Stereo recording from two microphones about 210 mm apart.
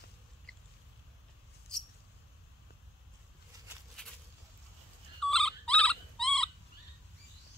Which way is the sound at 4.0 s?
5° left (ahead or behind).